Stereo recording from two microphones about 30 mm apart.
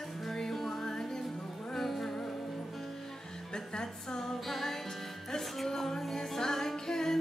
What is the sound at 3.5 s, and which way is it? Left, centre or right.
Music, left.